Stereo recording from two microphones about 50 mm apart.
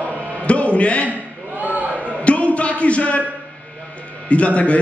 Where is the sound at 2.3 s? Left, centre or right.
Left.